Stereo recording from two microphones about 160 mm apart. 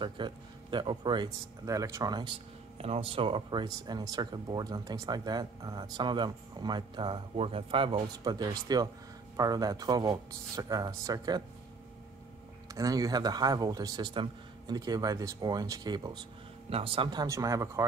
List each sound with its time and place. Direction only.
0.0 s speech: 30° right (ahead or behind)
12.7 s speech: 20° right (ahead or behind)